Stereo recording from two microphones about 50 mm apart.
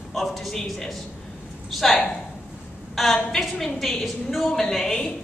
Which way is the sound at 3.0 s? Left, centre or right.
Centre.